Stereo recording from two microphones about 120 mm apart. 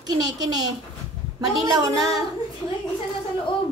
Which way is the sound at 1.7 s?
35° right (ahead or behind).